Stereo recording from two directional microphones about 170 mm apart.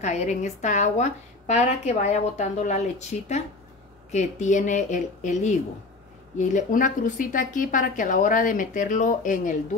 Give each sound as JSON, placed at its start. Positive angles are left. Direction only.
{"t": 0.0, "sound": "a woman's voice", "side_deg": 40}